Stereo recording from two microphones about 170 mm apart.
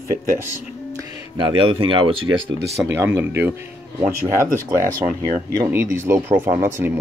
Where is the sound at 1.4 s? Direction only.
30° right (ahead or behind).